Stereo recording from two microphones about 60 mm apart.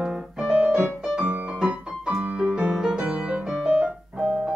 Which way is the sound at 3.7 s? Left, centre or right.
Centre.